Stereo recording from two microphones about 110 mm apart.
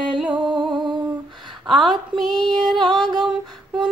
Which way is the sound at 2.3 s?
40° right (ahead or behind).